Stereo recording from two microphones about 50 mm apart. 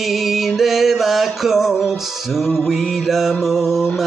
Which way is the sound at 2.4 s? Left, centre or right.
Centre.